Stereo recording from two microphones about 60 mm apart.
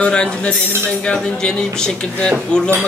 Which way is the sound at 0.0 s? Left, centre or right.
Centre.